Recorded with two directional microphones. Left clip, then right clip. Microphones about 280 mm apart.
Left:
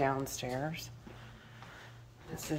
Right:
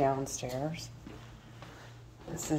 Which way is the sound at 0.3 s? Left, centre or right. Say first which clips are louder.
Right 1 dB; centre.